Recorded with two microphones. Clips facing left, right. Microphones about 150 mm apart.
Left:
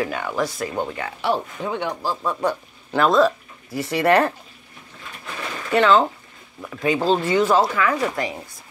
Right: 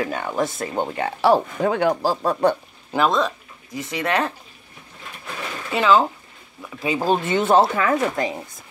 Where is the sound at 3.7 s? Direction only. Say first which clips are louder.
Left 5 dB; 10° left (ahead or behind).